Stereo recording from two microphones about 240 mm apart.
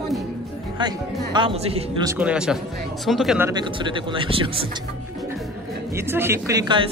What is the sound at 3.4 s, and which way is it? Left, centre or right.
Speech, centre.